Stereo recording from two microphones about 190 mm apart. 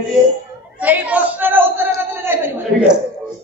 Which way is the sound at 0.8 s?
10° right (ahead or behind).